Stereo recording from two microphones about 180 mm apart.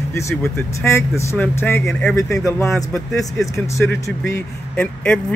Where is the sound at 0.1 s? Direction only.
15° left (ahead or behind).